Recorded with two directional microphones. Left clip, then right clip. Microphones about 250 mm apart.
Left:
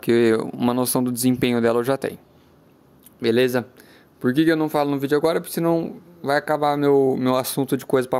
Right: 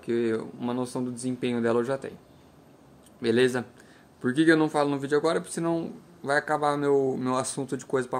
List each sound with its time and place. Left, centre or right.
0.0 s speech: left
3.2 s speech: left